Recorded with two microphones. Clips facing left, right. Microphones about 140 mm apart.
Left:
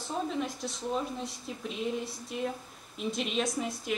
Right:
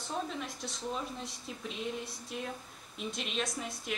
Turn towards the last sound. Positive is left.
turn(degrees=0)  # may be behind; listen again after turning